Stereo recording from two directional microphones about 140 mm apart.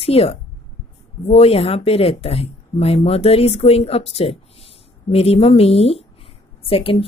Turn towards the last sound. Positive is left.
turn(degrees=40)  # may be behind; listen again after turning